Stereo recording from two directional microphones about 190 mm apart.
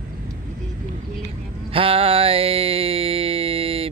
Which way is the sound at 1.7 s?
30° right (ahead or behind).